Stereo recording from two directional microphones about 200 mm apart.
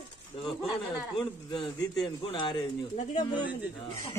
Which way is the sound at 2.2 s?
25° left (ahead or behind).